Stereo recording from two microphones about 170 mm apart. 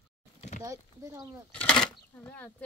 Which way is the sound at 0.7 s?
15° right (ahead or behind).